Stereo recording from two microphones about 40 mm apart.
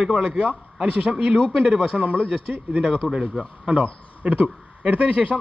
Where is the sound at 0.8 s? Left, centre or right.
Right.